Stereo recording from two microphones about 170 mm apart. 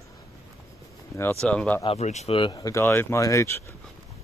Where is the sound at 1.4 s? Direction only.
5° left (ahead or behind).